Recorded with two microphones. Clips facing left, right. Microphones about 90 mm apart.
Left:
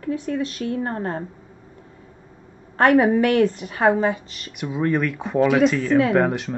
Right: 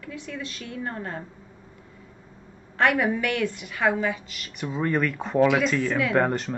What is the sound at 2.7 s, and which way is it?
A woman's voice, 40° left (ahead or behind).